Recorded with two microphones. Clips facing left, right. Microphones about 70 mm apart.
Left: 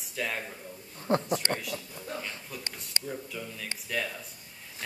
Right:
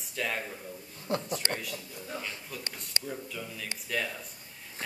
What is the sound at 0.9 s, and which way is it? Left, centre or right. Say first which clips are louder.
Speech: left 5 dB; left.